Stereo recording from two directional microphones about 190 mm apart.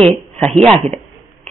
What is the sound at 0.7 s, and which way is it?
Speech, 30° right (ahead or behind).